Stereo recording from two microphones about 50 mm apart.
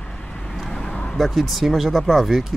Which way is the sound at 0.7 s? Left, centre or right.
Centre.